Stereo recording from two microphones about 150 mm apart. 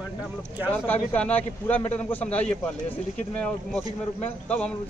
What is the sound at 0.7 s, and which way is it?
A man's voice, 10° left (ahead or behind).